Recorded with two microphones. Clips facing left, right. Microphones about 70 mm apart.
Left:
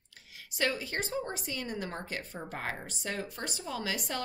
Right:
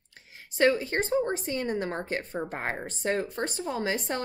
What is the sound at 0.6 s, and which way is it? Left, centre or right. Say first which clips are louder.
Speech: right 9 dB; right.